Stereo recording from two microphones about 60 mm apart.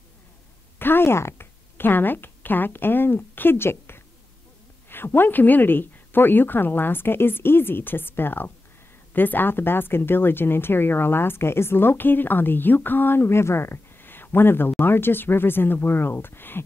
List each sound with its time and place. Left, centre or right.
0.7 s speech: left